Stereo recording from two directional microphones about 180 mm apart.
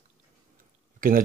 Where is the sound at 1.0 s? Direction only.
50° right (ahead or behind).